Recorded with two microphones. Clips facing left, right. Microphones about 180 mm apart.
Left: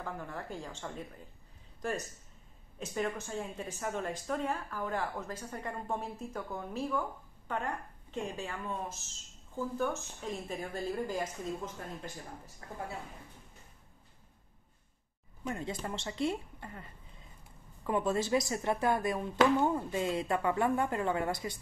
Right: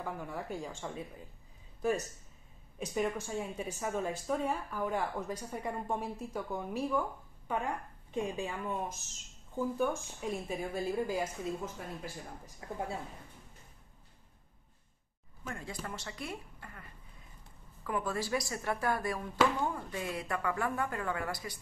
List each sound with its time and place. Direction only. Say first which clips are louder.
0.0 s speech: right 1 dB; 10° right (ahead or behind)
3.2 s speech: right 2 dB; 10° right (ahead or behind)
15.4 s speech: left 5 dB; 20° left (ahead or behind)
17.8 s speech: left 4 dB; 25° left (ahead or behind)